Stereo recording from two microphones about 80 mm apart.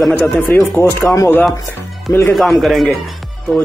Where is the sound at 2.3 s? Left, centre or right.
Centre.